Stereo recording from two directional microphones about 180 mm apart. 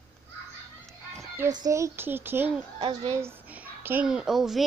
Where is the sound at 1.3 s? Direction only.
20° right (ahead or behind).